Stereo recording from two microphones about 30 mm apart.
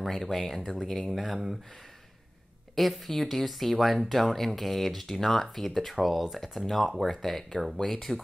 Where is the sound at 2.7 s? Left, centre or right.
Centre.